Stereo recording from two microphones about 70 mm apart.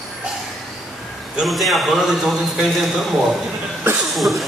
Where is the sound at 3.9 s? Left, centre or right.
Right.